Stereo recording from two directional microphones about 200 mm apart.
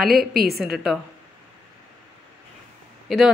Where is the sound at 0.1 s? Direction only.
50° right (ahead or behind).